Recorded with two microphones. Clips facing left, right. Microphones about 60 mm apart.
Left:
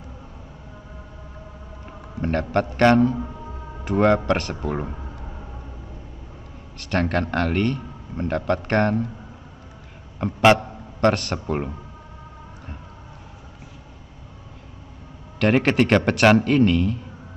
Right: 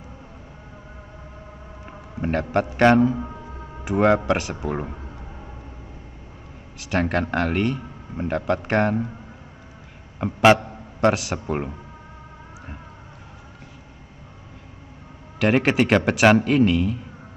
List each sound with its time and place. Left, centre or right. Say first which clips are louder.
2.1 s a man's voice: even; centre
6.8 s a man's voice: even; centre
10.2 s a man's voice: right 1 dB; centre
15.3 s a man's voice: left 1 dB; centre